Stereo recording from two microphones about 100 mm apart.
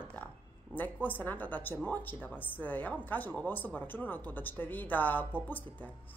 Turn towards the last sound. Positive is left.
turn(degrees=15)  # may be behind; listen again after turning